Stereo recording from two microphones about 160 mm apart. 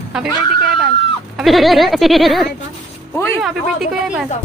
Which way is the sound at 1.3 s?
Centre (ahead or behind).